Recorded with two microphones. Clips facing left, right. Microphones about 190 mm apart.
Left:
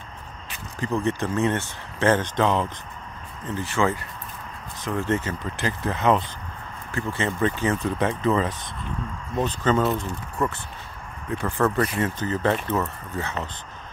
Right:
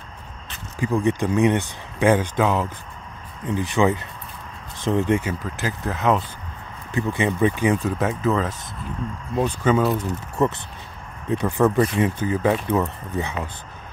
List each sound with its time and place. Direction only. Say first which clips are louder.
0.7 s speech: right 4 dB; 10° right (ahead or behind)
3.4 s speech: right 4 dB; 15° right (ahead or behind)
5.0 s speech: even; 15° right (ahead or behind)
5.4 s speech: even; centre (ahead or behind)
6.9 s speech: right 4 dB; 15° right (ahead or behind)
9.9 s speech: right 4 dB; 20° right (ahead or behind)